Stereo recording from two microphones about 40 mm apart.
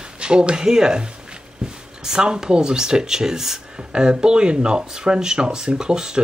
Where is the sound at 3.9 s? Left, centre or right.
Right.